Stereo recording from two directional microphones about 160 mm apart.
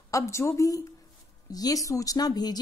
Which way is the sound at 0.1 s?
20° left (ahead or behind).